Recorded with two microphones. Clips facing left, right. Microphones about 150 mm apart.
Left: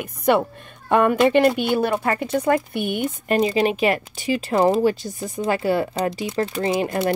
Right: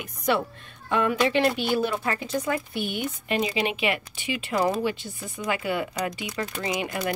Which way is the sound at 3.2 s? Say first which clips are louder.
Left 8 dB; 45° left (ahead or behind).